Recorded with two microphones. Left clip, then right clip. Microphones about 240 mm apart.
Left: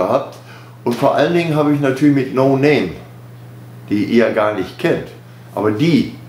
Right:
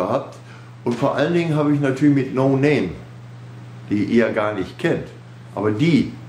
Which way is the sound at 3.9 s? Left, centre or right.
Centre.